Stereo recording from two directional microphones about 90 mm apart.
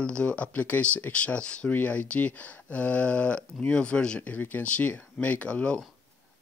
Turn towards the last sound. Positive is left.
turn(degrees=10)  # may be behind; listen again after turning